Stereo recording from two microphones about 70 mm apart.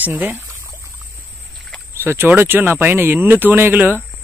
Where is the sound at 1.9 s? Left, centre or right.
Right.